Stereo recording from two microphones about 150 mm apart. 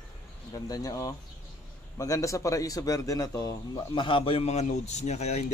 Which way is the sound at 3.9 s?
35° left (ahead or behind).